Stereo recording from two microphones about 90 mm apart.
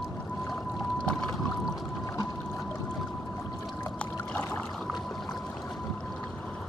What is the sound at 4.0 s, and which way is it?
Boat, 15° left (ahead or behind).